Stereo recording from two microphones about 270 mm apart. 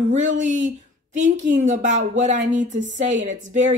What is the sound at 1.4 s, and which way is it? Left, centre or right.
Speech, right.